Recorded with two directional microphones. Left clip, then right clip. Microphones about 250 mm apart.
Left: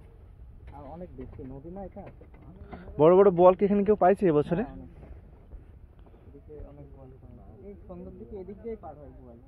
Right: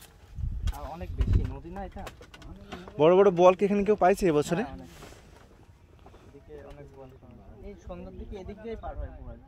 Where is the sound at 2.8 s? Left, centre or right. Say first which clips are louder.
Left 1 dB; centre.